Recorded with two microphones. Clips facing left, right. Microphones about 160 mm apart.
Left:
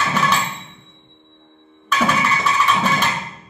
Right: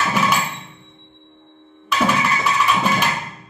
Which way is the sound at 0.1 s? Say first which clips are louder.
Even; 5° right (ahead or behind).